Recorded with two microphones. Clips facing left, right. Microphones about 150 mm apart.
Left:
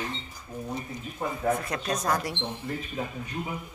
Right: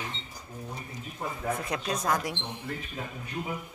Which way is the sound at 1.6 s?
10° right (ahead or behind).